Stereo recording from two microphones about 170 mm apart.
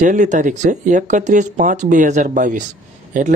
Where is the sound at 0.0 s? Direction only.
45° right (ahead or behind).